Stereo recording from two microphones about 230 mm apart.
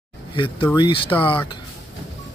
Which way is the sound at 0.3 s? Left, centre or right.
Left.